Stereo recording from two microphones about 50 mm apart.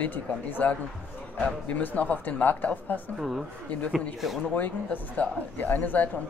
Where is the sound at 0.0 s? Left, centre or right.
Left.